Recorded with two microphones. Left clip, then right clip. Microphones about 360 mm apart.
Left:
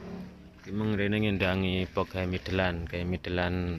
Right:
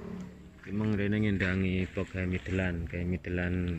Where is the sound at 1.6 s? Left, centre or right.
Left.